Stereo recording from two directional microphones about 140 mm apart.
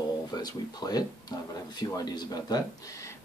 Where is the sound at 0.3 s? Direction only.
30° left (ahead or behind).